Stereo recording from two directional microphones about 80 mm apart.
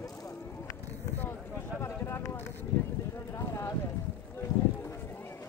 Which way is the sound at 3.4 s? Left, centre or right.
Left.